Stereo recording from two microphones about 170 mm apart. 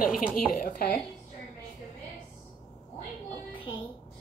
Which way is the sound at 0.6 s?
60° left (ahead or behind).